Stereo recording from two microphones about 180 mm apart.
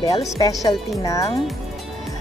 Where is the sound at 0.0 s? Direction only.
20° left (ahead or behind).